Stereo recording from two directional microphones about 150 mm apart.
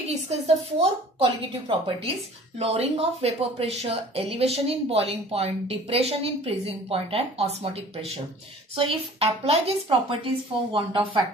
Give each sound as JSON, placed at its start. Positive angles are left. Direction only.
{"t": 0.1, "sound": "speech", "side_deg": -45}
{"t": 8.7, "sound": "speech", "side_deg": -40}